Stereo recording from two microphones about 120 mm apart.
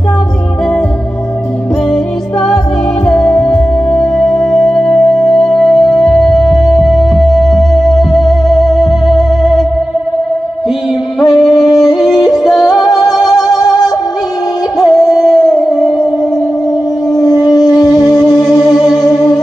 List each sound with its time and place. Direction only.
3.1 s music: 5° left (ahead or behind)
11.1 s yodeling: centre (ahead or behind)
14.8 s music: centre (ahead or behind)
17.2 s a sound: 30° left (ahead or behind)
18.2 s music: centre (ahead or behind)
18.8 s music: 30° left (ahead or behind)